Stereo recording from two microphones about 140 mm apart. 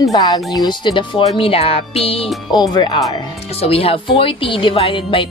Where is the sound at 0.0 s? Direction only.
25° left (ahead or behind); by 2.2 s 45° left (ahead or behind).